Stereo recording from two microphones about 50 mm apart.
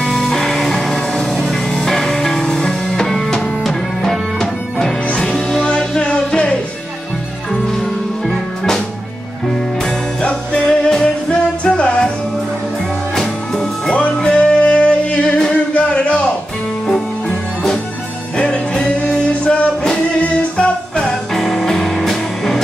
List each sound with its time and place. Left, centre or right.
0.0 s music: centre
5.7 s music: centre
8.3 s music: centre
10.2 s music: left
13.1 s music: centre
13.8 s music: left
18.4 s music: centre
21.1 s music: centre